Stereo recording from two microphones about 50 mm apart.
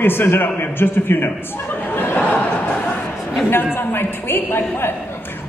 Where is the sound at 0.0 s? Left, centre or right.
Left.